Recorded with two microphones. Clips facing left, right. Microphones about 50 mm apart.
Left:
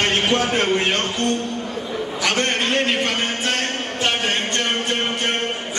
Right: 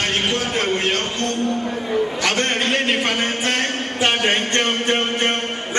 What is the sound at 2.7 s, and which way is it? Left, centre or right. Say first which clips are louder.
Speech: right 1 dB; centre.